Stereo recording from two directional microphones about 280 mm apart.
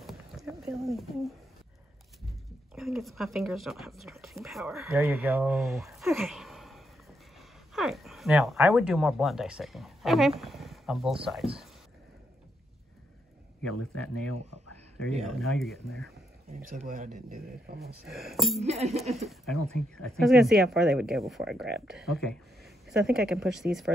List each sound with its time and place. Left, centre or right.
0.0 s a sound: centre
2.7 s speech: centre
10.4 s a sound: centre
13.9 s speech: centre
14.3 s speech: left
15.2 s speech: centre
16.7 s a man's voice: right
18.0 s speech: centre
18.6 s a man's voice: right
19.2 s speech: centre